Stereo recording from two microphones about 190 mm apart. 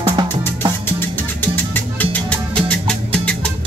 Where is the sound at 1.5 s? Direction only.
10° left (ahead or behind).